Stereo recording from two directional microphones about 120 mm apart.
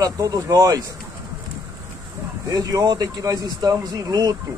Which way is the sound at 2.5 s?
30° right (ahead or behind).